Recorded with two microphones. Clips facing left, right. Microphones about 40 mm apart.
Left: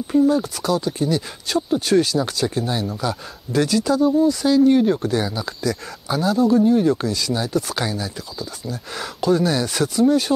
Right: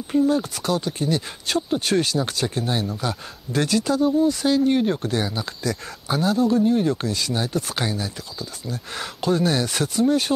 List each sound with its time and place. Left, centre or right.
0.1 s speech: centre
7.1 s speech: right